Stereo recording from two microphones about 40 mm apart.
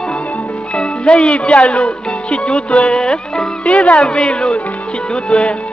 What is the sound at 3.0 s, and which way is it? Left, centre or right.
Music, centre.